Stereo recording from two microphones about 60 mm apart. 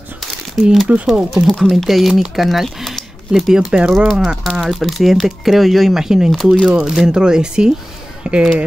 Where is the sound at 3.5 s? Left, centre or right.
Centre.